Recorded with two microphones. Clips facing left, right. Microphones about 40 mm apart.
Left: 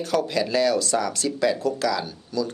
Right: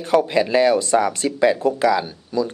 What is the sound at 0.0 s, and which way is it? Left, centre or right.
Speech, right.